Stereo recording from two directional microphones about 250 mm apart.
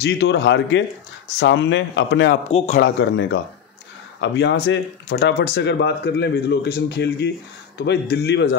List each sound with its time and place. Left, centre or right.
0.0 s speech: left
2.5 s speech: left
2.8 s a man's voice: left